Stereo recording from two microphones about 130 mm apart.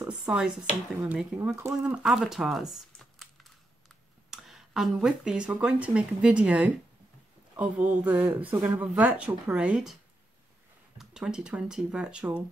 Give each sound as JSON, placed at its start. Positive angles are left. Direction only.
{"t": 0.1, "sound": "speech", "side_deg": -5}
{"t": 1.6, "sound": "speech", "side_deg": -20}
{"t": 2.0, "sound": "a sound", "side_deg": 0}
{"t": 4.3, "sound": "speech", "side_deg": -5}
{"t": 11.0, "sound": "speech", "side_deg": -5}